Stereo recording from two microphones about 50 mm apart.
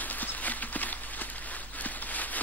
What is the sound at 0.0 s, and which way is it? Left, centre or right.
Walk, left.